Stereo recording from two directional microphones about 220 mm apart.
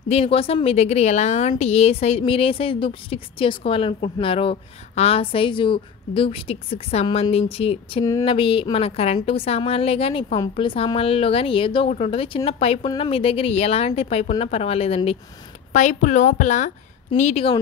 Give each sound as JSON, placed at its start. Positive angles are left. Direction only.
{"t": 0.1, "sound": "a woman's voice", "side_deg": 25}